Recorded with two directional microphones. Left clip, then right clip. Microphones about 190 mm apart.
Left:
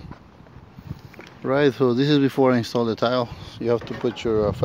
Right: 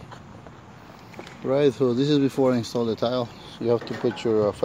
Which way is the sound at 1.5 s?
30° left (ahead or behind).